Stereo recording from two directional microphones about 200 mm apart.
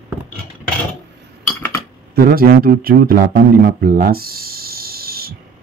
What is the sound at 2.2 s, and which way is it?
A man's voice, 50° right (ahead or behind).